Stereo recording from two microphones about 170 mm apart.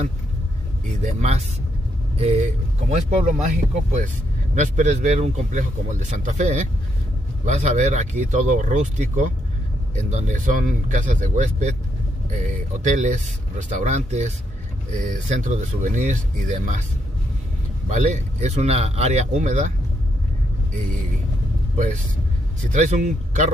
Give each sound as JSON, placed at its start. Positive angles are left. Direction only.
{"t": 1.0, "sound": "a man's voice", "side_deg": -40}
{"t": 17.8, "sound": "a man's voice", "side_deg": -45}
{"t": 21.7, "sound": "a man's voice", "side_deg": -45}